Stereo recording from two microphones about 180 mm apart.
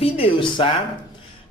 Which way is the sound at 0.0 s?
30° left (ahead or behind).